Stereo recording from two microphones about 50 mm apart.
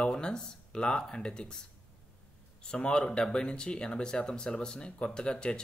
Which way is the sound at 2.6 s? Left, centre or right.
Centre.